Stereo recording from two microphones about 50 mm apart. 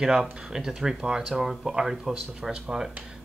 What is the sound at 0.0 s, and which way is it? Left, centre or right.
Speech, centre.